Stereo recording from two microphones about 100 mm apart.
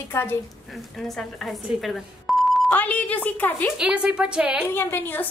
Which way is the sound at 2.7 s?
15° left (ahead or behind).